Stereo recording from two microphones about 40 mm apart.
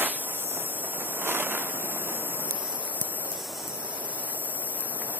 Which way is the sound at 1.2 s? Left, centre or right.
Right.